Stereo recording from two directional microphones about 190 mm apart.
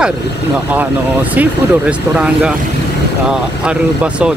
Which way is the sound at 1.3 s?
5° right (ahead or behind).